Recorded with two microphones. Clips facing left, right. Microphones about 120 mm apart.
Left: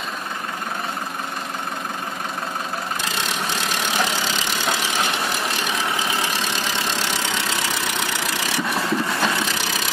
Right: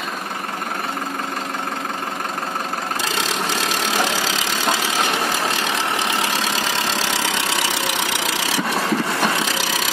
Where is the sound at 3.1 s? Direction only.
90° right.